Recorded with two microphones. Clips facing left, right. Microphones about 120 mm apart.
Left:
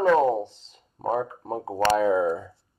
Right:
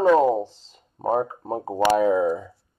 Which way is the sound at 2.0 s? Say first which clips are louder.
Right 2 dB; 5° right (ahead or behind).